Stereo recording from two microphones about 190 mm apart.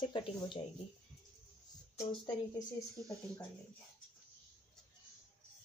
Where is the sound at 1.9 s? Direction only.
25° left (ahead or behind).